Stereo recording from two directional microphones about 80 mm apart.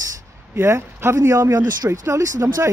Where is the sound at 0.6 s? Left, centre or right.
Right.